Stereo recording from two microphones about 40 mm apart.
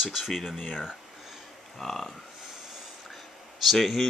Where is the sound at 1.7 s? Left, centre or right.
Centre.